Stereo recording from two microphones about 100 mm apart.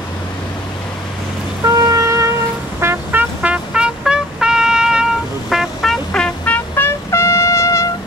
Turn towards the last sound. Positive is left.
turn(degrees=30)  # may be behind; listen again after turning